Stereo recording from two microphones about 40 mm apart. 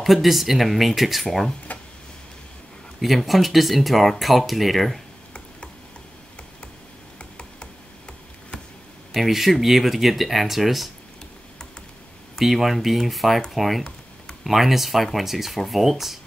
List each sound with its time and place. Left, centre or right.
0.0 s speech: centre
1.7 s a sound: left
3.0 s speech: centre
9.1 s speech: centre
12.4 s speech: centre